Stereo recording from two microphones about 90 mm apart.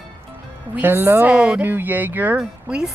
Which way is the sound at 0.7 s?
20° right (ahead or behind).